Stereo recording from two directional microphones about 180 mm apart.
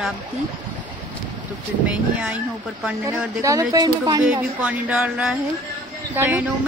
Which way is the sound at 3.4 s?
20° right (ahead or behind).